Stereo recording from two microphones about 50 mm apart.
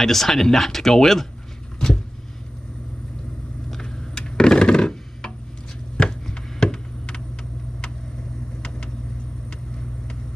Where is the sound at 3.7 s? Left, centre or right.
Centre.